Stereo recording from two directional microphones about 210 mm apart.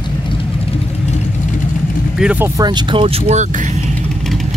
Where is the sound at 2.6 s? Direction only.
20° right (ahead or behind).